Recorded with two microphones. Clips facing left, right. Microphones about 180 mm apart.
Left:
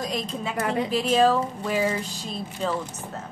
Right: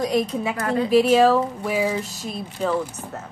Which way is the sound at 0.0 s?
10° right (ahead or behind).